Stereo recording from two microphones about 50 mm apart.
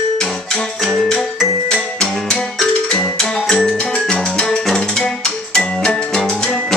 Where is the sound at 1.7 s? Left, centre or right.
Centre.